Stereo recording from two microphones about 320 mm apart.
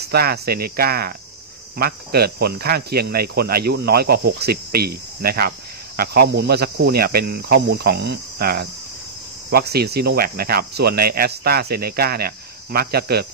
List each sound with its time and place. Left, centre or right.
0.1 s speech: right